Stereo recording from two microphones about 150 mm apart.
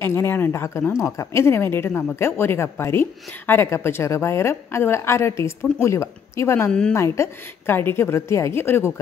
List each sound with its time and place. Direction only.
0.0 s speech: 15° left (ahead or behind)